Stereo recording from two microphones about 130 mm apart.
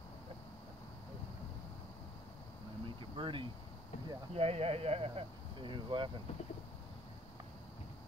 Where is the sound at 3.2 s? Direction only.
40° right (ahead or behind).